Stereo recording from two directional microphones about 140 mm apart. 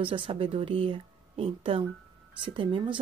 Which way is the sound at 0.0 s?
40° right (ahead or behind).